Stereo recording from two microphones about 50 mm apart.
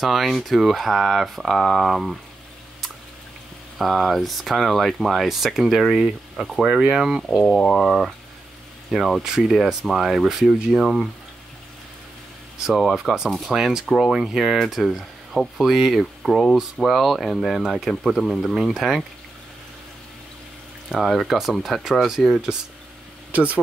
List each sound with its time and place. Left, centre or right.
0.0 s speech: centre
3.7 s speech: centre
7.4 s speech: centre
8.9 s speech: centre
12.9 s speech: centre
15.5 s speech: centre
18.1 s speech: centre
21.0 s speech: centre
23.3 s speech: right